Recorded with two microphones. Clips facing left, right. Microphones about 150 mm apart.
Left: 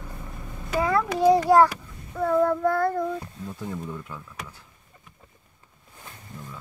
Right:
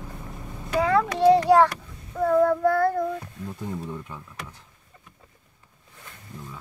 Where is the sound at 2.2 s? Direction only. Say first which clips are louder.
Right 2 dB; centre (ahead or behind).